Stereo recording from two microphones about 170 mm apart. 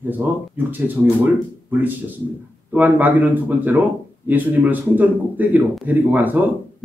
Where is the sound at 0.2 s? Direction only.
10° right (ahead or behind).